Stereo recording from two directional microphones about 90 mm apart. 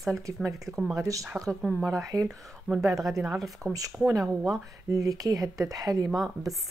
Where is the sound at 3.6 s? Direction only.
40° right (ahead or behind).